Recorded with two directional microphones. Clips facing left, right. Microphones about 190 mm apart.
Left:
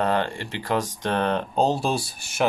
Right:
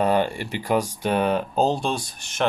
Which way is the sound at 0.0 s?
10° right (ahead or behind).